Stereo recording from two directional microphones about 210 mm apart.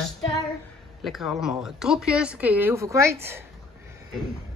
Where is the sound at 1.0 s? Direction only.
Centre (ahead or behind).